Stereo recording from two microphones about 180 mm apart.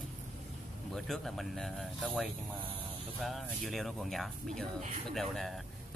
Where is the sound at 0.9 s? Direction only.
Centre (ahead or behind).